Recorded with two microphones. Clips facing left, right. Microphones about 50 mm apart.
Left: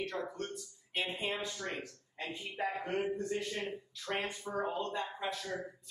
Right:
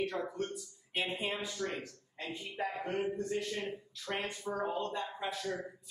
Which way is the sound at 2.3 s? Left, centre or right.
Centre.